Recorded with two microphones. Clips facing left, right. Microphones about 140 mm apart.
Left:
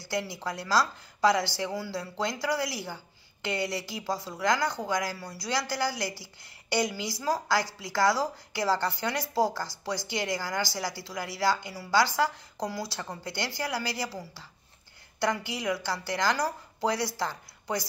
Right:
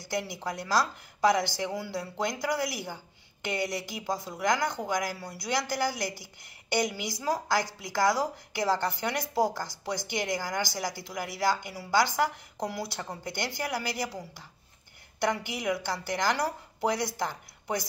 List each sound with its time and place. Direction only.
0.0 s speech: 20° right (ahead or behind)